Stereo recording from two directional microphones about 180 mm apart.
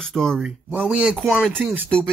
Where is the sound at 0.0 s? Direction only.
5° left (ahead or behind).